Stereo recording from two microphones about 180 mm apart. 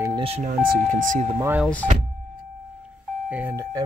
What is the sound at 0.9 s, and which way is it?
Speech, 45° right (ahead or behind).